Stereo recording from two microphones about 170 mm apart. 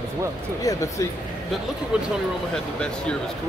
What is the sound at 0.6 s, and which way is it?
Speech, 20° left (ahead or behind).